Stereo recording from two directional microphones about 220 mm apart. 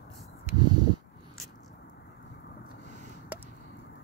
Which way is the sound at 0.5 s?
20° right (ahead or behind).